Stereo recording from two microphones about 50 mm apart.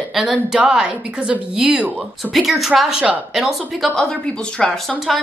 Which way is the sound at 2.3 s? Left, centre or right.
Centre.